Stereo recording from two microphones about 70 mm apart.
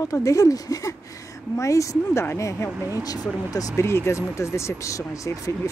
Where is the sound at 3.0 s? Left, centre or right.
Left.